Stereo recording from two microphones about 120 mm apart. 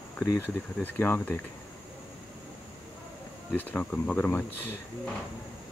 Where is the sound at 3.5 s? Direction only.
15° left (ahead or behind).